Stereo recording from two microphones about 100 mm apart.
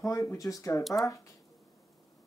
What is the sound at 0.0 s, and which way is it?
Speech, 30° left (ahead or behind).